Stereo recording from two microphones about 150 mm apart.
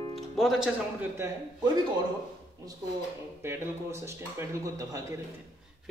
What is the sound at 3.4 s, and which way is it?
Speech, 15° right (ahead or behind).